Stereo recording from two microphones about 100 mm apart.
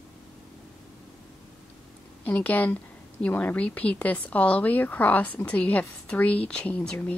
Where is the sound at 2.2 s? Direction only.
15° left (ahead or behind).